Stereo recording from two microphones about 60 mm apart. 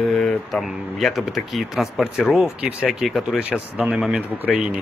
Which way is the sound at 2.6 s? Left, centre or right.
Right.